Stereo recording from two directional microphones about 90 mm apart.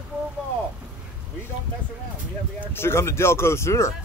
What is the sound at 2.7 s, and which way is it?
Speech, 25° left (ahead or behind).